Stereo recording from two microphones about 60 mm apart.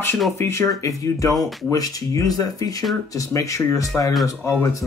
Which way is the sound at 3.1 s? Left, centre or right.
Left.